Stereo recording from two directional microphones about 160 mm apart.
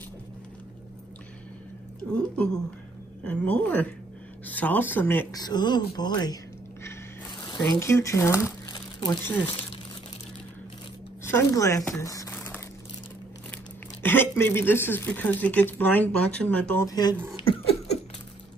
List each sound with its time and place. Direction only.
2.1 s speech: 5° left (ahead or behind)
5.3 s speech: 25° left (ahead or behind)
8.6 s crumpling: 25° left (ahead or behind)
11.2 s speech: 15° left (ahead or behind)
12.0 s crumpling: 20° left (ahead or behind)
14.0 s speech: 15° left (ahead or behind)
16.8 s speech: 25° left (ahead or behind)
17.4 s a sound: 35° left (ahead or behind)